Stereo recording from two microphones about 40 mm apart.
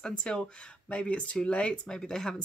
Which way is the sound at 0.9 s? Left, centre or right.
Left.